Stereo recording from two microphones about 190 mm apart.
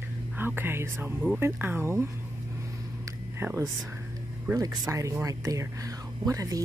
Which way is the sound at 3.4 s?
15° right (ahead or behind).